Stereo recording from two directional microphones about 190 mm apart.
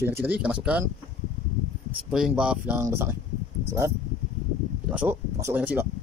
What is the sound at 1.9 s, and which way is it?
Speech, 5° right (ahead or behind).